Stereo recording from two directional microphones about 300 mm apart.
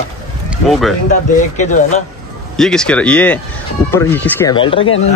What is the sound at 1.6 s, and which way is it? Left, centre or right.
Speech, left.